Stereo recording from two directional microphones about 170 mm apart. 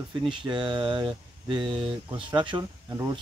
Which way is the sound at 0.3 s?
30° right (ahead or behind).